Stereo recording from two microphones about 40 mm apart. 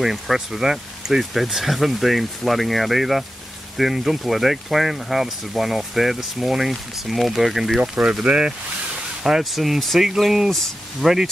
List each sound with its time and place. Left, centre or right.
0.0 s speech: centre
7.8 s speech: centre
9.4 s speech: centre